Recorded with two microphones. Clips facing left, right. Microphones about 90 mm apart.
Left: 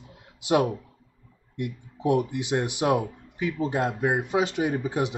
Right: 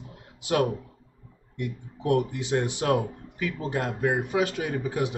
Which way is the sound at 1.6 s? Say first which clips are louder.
Left 1 dB; 20° left (ahead or behind).